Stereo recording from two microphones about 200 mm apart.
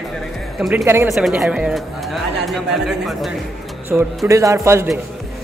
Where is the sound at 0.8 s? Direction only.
15° right (ahead or behind).